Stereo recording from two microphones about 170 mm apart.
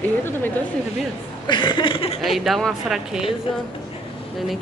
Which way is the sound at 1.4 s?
30° left (ahead or behind).